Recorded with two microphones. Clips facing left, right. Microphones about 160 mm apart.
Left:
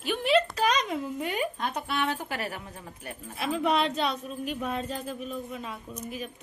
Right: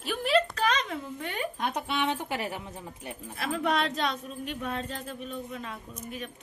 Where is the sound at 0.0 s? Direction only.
Centre (ahead or behind).